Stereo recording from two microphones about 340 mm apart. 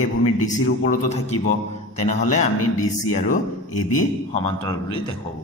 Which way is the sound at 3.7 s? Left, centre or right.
Left.